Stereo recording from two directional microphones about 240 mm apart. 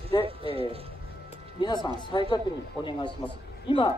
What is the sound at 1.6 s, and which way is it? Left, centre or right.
Speech, centre.